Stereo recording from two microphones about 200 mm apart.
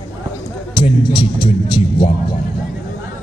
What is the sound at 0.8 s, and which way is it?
Music, 25° left (ahead or behind).